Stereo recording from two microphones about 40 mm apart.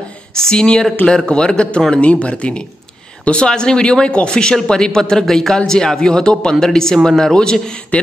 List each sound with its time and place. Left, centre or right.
0.4 s speech: centre
7.9 s speech: left